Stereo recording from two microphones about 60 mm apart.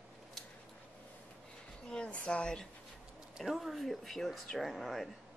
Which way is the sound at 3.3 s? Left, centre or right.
Centre.